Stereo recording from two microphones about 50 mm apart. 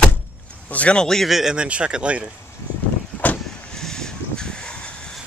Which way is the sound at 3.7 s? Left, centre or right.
Centre.